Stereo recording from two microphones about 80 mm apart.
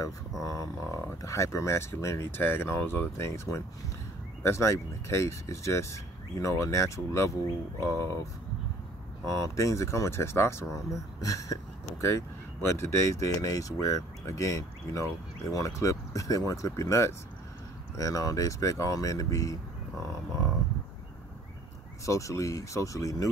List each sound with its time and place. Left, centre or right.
0.4 s speech: left
9.3 s speech: left
22.0 s speech: left